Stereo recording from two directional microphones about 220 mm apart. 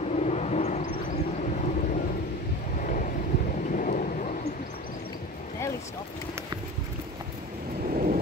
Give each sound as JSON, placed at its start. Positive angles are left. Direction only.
{"t": 0.1, "sound": "vehicle", "side_deg": 30}
{"t": 2.8, "sound": "wind noise", "side_deg": 35}
{"t": 3.7, "sound": "thunder", "side_deg": 35}
{"t": 7.9, "sound": "thunder", "side_deg": -35}